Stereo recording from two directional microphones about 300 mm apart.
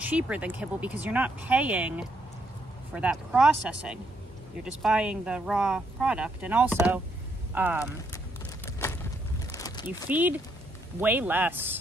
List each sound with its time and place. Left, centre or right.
0.0 s a man's voice: centre
8.6 s a sound: centre
10.0 s a man's voice: centre